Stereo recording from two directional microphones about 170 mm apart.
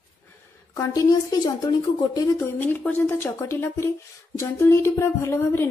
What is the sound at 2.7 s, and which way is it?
A woman's voice, 10° left (ahead or behind).